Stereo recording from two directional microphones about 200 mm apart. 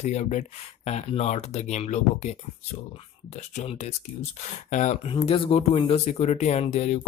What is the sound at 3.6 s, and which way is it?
Speech, 35° left (ahead or behind).